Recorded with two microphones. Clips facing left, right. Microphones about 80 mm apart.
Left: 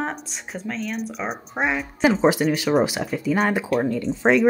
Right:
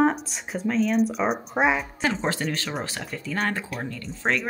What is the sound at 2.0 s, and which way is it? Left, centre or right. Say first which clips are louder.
Speech: left 8 dB; centre.